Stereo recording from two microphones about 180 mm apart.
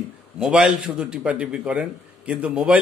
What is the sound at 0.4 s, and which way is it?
A man's voice, 5° right (ahead or behind).